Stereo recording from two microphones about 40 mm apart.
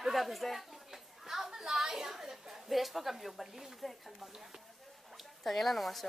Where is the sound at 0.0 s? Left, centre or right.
Centre.